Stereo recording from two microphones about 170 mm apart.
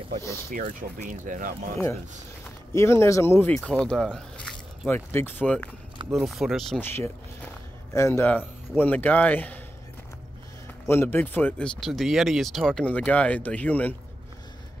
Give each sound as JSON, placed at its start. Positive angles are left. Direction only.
{"t": 0.5, "sound": "speech", "side_deg": -55}
{"t": 2.7, "sound": "speech", "side_deg": 15}
{"t": 6.1, "sound": "speech", "side_deg": 0}
{"t": 6.8, "sound": "speech", "side_deg": 15}
{"t": 10.9, "sound": "speech", "side_deg": 15}